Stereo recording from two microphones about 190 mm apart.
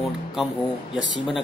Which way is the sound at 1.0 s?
75° left (ahead or behind).